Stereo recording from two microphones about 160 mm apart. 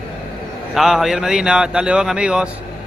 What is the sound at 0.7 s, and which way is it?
A man's voice, centre (ahead or behind).